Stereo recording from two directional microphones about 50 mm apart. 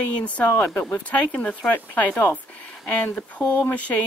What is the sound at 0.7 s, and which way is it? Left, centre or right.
A woman's voice, left.